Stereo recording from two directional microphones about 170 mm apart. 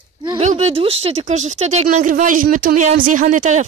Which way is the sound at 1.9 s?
50° right (ahead or behind).